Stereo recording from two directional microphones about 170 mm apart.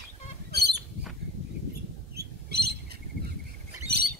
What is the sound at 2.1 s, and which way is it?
Bird, 70° right (ahead or behind).